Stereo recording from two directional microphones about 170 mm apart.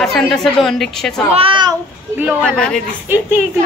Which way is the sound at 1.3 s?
30° right (ahead or behind).